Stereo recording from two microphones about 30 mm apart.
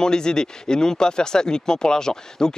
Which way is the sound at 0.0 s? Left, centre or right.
Left.